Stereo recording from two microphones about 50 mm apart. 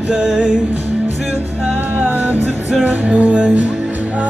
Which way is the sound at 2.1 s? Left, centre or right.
Right.